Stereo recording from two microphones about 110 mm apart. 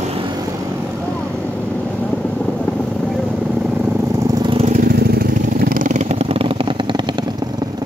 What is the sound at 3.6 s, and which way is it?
Vehicle, 15° right (ahead or behind).